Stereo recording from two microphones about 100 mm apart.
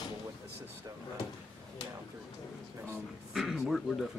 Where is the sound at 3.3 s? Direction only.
5° right (ahead or behind).